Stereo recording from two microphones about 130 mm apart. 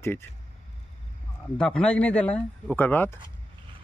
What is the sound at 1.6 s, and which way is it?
Speech, 5° left (ahead or behind).